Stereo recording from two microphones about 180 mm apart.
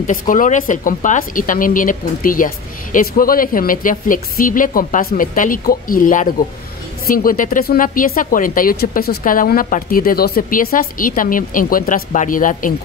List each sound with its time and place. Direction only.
0.0 s speech: 50° left (ahead or behind)